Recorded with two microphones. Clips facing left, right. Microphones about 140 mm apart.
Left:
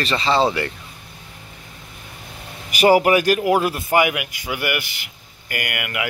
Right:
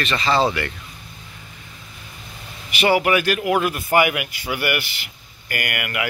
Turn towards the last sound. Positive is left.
turn(degrees=20)  # may be behind; listen again after turning